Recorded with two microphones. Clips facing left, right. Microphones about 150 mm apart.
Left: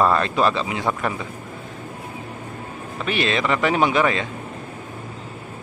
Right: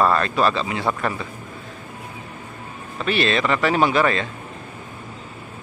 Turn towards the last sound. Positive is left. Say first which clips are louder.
# right 1 dB
turn(degrees=15)  # may be behind; listen again after turning